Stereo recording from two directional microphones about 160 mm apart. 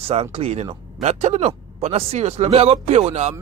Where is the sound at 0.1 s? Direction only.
40° right (ahead or behind).